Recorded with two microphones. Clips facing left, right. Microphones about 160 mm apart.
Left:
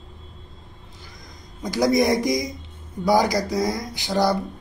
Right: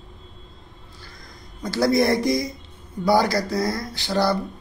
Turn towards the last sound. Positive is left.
turn(degrees=15)  # may be behind; listen again after turning